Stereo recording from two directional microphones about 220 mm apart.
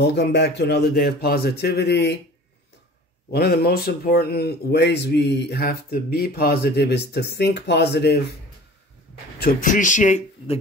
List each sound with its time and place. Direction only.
0.0 s speech: 50° left (ahead or behind)
3.3 s speech: 45° left (ahead or behind)
9.4 s speech: 35° left (ahead or behind)